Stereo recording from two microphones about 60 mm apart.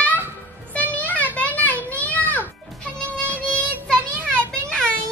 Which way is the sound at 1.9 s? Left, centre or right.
Left.